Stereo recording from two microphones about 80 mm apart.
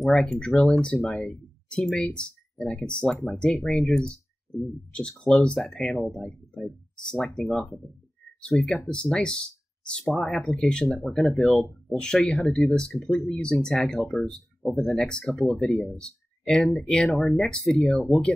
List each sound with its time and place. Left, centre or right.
0.0 s speech: centre
10.9 s speech: left
11.1 s speech: centre